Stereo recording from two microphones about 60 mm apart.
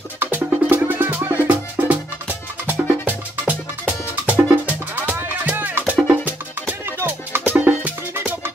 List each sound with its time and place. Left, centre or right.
0.2 s music: right
7.0 s music: right
7.4 s music: right